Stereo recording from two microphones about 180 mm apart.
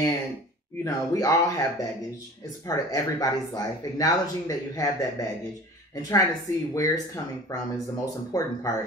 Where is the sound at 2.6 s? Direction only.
20° left (ahead or behind).